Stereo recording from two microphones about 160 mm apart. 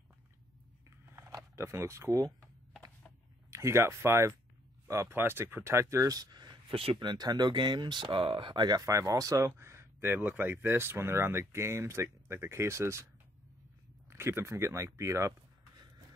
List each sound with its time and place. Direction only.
0.8 s a sound: 15° right (ahead or behind)
3.4 s speech: 20° right (ahead or behind)
14.0 s speech: 15° right (ahead or behind)